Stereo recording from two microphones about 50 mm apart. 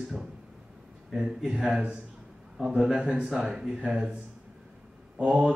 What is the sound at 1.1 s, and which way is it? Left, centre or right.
A man's voice, centre.